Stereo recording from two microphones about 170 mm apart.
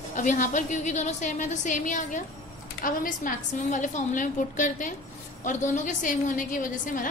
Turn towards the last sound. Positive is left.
turn(degrees=50)  # may be behind; listen again after turning